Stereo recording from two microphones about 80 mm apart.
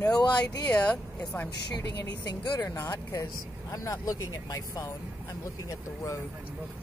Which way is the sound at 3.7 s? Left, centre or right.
Left.